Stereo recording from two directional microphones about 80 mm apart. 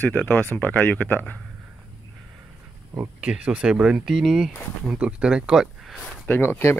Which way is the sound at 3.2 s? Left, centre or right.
Centre.